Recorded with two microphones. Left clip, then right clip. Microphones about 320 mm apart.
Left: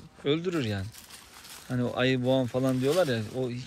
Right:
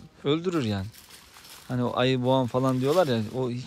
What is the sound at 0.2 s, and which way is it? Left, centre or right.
Speech, centre.